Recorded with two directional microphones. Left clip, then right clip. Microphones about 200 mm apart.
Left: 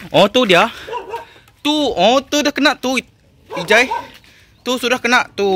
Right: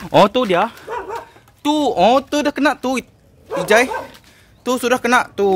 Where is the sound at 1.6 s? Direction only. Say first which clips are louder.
Even; 5° right (ahead or behind).